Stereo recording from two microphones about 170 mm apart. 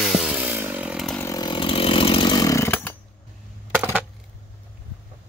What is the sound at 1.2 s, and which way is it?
Chainsaw, 20° left (ahead or behind).